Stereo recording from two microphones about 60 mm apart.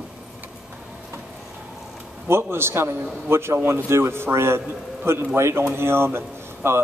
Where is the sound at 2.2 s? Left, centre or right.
Right.